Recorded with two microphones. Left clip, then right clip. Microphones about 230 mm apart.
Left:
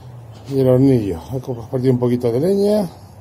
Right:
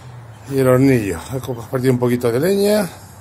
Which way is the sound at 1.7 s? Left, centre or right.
Centre.